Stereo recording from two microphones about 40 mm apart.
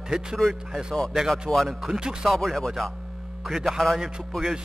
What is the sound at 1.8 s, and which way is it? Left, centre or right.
Speech, centre.